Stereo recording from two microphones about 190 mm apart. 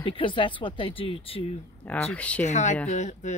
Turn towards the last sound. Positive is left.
turn(degrees=40)  # may be behind; listen again after turning